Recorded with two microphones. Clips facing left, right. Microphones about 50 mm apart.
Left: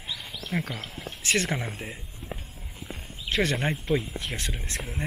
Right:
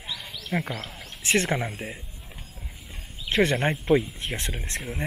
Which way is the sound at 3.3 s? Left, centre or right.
Right.